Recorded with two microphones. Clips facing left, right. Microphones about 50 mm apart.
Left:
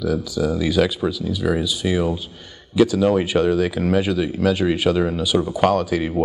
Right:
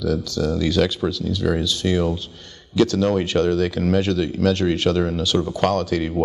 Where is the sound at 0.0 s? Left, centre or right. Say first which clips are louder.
Left 1 dB; centre.